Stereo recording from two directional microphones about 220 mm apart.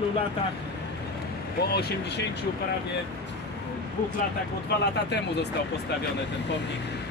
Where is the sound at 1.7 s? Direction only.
50° left (ahead or behind).